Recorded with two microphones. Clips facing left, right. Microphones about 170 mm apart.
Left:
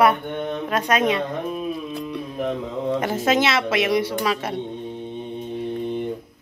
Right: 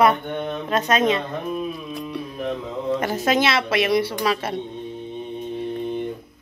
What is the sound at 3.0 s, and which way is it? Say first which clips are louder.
A woman's voice: left 1 dB; 25° left (ahead or behind).